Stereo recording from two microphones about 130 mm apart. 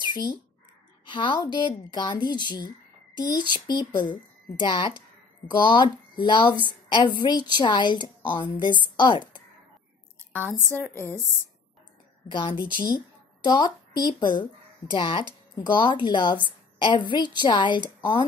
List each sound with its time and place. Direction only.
0.0 s a sound: 35° left (ahead or behind)
1.0 s speech: 40° left (ahead or behind)
10.3 s speech: 10° left (ahead or behind)
12.3 s a woman's voice: 40° left (ahead or behind)